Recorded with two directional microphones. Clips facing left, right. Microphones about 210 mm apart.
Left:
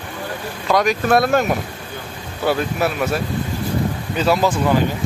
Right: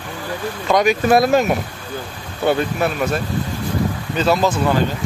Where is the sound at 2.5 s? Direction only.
5° left (ahead or behind).